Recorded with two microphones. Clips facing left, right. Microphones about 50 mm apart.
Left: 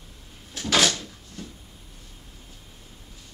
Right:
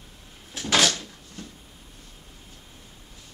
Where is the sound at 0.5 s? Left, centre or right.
Centre.